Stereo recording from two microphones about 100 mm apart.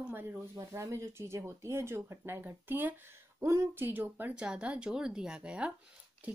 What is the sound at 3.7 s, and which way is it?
Speech, 20° right (ahead or behind).